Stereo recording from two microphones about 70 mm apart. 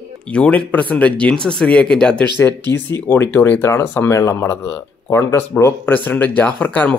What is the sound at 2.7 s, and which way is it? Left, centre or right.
Speech, left.